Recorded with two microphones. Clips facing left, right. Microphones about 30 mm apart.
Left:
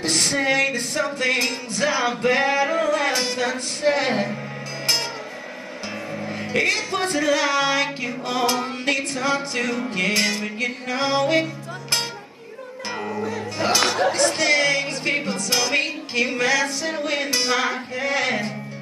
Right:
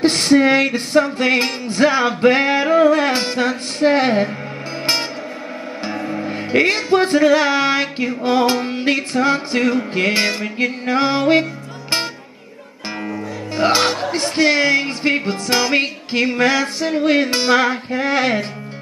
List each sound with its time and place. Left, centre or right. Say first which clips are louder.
0.0 s music: right 8 dB; right
5.9 s music: right 6 dB; right
13.6 s music: right 4 dB; right